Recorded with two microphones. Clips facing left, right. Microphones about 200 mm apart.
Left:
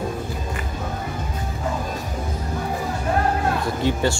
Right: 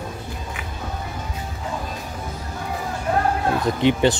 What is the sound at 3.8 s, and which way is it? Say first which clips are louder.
Speech: right 5 dB; 20° right (ahead or behind).